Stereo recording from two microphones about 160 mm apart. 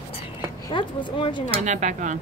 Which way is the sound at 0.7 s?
30° left (ahead or behind).